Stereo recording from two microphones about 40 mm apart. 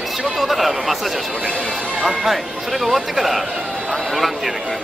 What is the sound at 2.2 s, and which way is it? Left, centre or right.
Speech, centre.